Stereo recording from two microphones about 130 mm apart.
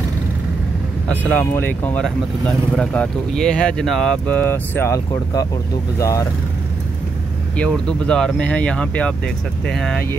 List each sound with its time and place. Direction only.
1.3 s speech: 15° left (ahead or behind)
7.5 s speech: 5° left (ahead or behind)